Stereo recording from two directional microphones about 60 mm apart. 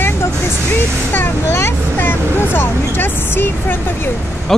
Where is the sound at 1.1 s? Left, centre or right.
Left.